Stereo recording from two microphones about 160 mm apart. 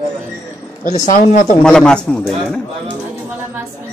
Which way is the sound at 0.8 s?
50° left (ahead or behind).